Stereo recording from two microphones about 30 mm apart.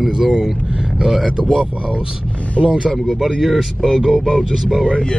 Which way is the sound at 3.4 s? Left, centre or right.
Centre.